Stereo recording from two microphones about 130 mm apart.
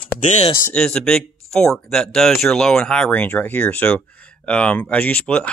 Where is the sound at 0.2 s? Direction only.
65° left (ahead or behind).